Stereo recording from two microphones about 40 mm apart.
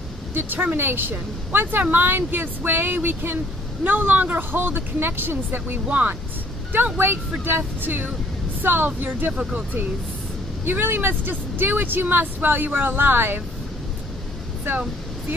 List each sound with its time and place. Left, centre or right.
0.3 s speech: right
4.5 s speech: right
9.4 s speech: centre
10.6 s speech: right